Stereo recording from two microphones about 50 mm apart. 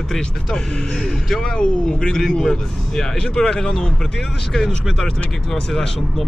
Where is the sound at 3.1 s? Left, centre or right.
Centre.